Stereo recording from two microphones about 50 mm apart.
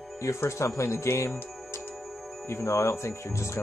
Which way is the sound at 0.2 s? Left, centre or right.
Left.